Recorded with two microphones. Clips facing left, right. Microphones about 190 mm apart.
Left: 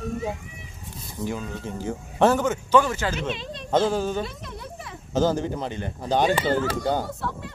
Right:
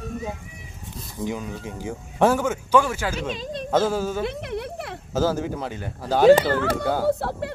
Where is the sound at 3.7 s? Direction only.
5° right (ahead or behind).